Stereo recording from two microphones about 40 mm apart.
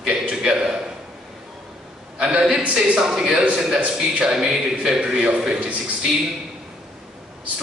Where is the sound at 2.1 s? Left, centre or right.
Centre.